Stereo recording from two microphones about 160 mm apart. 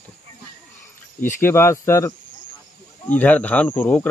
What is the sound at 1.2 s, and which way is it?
Speech, 15° left (ahead or behind).